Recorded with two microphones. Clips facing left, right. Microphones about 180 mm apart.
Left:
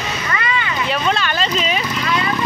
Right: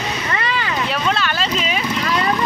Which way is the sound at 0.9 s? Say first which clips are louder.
Left 3 dB; 5° right (ahead or behind).